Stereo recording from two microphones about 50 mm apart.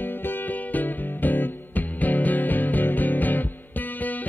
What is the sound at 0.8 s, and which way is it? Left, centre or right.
Music, left.